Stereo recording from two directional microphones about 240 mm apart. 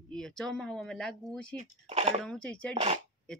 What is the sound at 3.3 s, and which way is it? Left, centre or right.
Speech, centre.